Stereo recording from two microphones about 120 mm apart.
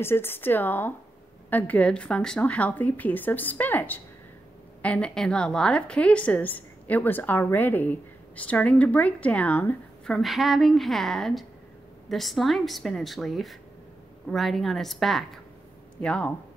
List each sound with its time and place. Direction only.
0.0 s a woman's voice: 20° left (ahead or behind)